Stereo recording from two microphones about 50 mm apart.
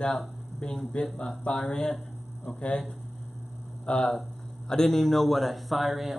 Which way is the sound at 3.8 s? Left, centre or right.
Centre.